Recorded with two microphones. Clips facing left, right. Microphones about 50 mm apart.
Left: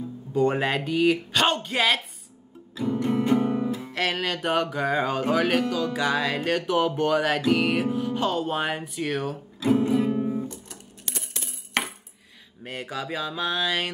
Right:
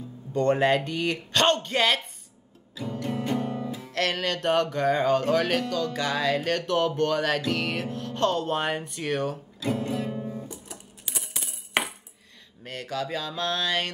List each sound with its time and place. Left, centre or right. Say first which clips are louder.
0.3 s speech: right 1 dB; centre
2.7 s music: left 6 dB; centre
10.1 s music: left 7 dB; left
10.5 s coin: even; centre
12.6 s mantra: right 1 dB; centre